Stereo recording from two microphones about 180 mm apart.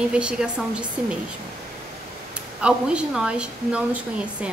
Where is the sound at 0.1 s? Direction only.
5° right (ahead or behind).